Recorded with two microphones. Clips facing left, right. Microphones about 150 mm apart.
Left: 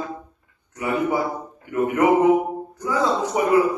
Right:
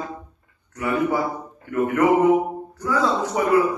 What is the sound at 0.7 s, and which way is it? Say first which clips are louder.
A man's voice: even; 20° left (ahead or behind).